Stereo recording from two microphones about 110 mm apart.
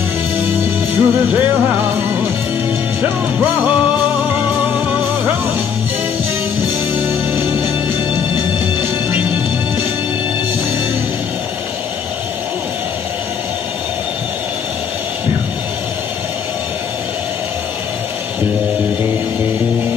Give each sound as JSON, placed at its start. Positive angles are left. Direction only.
{"t": 0.9, "sound": "music", "side_deg": -20}
{"t": 4.2, "sound": "music", "side_deg": -15}